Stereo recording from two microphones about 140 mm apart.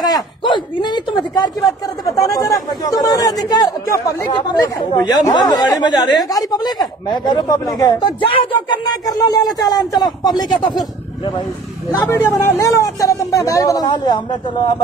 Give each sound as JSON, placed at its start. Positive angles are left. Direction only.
{"t": 0.0, "sound": "speech", "side_deg": 30}
{"t": 5.3, "sound": "speech", "side_deg": 30}
{"t": 9.0, "sound": "speech", "side_deg": 25}
{"t": 12.0, "sound": "speech", "side_deg": 15}